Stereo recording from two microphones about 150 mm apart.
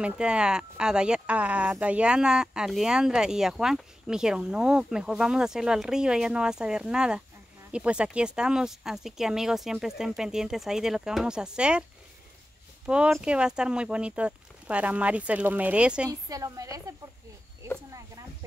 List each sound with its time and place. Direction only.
0.0 s speech: 5° right (ahead or behind)
12.8 s speech: 5° right (ahead or behind)
16.1 s a woman's voice: 25° right (ahead or behind)